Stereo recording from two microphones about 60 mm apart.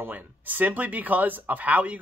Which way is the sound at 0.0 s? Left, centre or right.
Right.